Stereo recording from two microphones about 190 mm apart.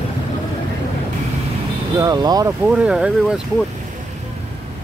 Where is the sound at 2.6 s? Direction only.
5° right (ahead or behind).